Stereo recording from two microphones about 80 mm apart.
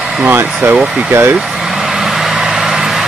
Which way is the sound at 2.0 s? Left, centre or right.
Centre.